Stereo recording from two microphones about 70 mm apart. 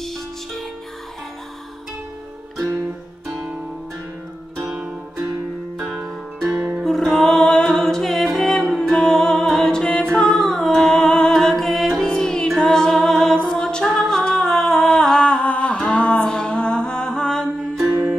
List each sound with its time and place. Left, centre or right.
0.0 s music: centre
5.9 s music: centre
6.5 s music: right
6.8 s music: centre
17.7 s music: right